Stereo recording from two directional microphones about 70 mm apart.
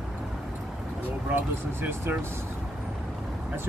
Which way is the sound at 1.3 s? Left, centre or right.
Right.